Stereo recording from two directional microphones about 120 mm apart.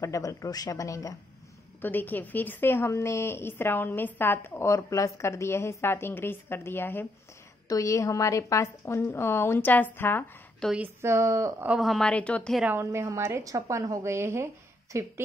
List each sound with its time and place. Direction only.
0.0 s a woman's voice: 25° left (ahead or behind)
1.8 s a woman's voice: 15° left (ahead or behind)
7.6 s a woman's voice: 30° left (ahead or behind)
10.8 s a woman's voice: 20° right (ahead or behind)
11.8 s a woman's voice: centre (ahead or behind)
12.6 s a woman's voice: 20° right (ahead or behind)